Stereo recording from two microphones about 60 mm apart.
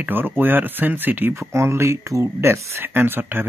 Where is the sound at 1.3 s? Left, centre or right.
Right.